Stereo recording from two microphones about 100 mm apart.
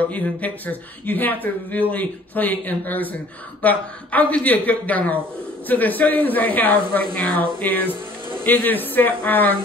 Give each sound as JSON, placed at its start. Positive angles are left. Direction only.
{"t": 0.0, "sound": "a man's voice", "side_deg": 15}